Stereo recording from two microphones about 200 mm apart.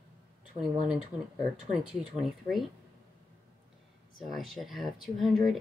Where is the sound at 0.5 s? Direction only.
30° right (ahead or behind).